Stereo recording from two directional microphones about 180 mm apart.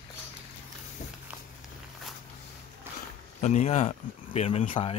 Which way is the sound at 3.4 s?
40° left (ahead or behind).